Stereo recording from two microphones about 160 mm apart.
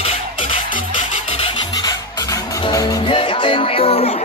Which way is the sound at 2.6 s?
20° left (ahead or behind).